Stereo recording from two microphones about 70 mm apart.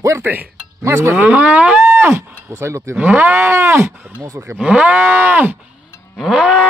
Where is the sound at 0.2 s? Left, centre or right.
Right.